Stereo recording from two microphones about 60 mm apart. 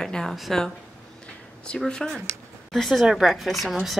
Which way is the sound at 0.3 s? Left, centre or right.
Centre.